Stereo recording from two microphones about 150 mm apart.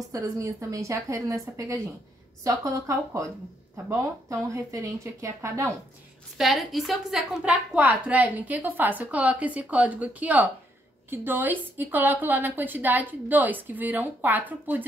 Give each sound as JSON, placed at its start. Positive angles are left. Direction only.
{"t": 0.1, "sound": "a woman's voice", "side_deg": -20}
{"t": 6.3, "sound": "a woman's voice", "side_deg": 0}